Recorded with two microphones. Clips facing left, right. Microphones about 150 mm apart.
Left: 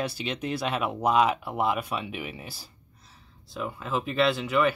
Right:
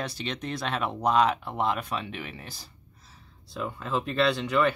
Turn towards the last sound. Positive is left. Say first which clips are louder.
# even
turn(degrees=5)  # may be behind; listen again after turning